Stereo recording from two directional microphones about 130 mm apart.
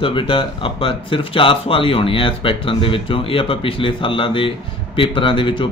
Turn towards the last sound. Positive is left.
turn(degrees=40)  # may be behind; listen again after turning